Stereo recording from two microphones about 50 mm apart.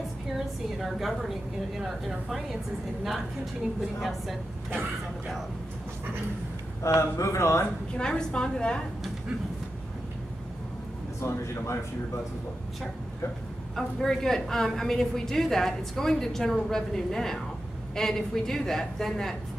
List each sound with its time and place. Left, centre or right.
0.7 s a woman's voice: centre
6.8 s speech: left
7.9 s a woman's voice: centre
11.1 s speech: left
13.7 s a woman's voice: centre